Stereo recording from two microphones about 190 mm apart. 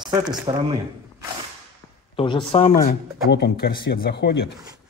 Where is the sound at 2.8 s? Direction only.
55° left (ahead or behind).